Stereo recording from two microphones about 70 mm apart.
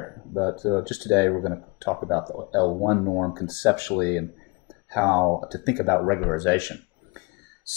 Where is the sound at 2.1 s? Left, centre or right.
Centre.